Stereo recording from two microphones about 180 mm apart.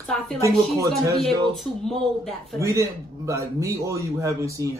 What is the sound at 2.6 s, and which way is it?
A man's voice, 15° right (ahead or behind).